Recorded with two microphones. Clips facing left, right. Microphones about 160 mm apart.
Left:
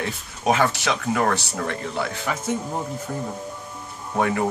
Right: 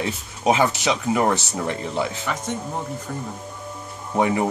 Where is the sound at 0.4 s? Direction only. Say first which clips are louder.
Right 1 dB; 20° right (ahead or behind).